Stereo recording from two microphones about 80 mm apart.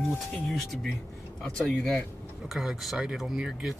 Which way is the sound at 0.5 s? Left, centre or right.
Centre.